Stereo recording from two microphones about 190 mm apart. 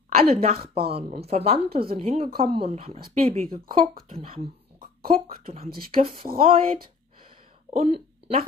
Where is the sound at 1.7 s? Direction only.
55° right (ahead or behind).